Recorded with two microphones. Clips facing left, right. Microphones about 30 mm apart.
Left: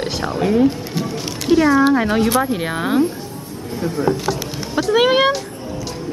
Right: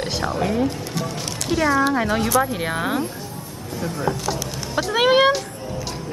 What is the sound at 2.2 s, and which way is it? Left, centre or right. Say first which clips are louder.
Speech: left 2 dB; left.